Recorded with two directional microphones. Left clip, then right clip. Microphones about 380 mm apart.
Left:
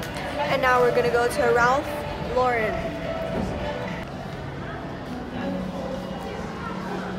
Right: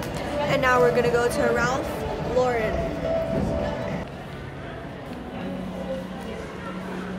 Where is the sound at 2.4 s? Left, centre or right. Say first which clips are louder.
Left 1 dB; centre.